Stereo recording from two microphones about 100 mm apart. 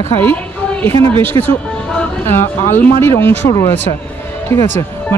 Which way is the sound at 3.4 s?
35° left (ahead or behind).